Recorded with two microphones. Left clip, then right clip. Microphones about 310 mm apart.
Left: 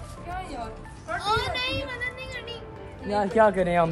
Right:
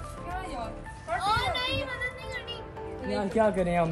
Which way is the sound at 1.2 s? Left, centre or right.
Centre.